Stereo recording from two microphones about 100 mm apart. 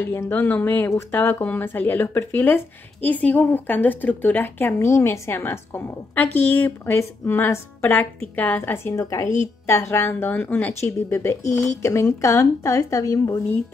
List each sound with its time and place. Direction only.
0.1 s speech: 20° left (ahead or behind)